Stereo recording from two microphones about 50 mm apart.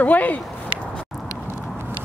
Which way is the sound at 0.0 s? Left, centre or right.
Left.